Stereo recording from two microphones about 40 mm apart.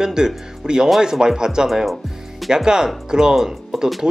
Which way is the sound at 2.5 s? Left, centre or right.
Centre.